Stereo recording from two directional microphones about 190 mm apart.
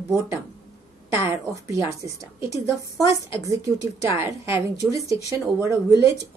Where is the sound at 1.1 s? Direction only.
15° right (ahead or behind).